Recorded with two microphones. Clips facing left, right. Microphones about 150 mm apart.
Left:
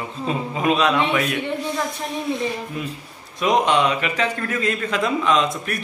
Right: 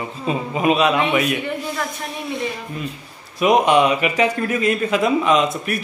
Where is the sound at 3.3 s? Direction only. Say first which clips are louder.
Right 4 dB; 10° right (ahead or behind).